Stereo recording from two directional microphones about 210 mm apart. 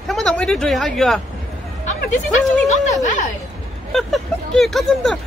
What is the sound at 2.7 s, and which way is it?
Speech, 35° left (ahead or behind).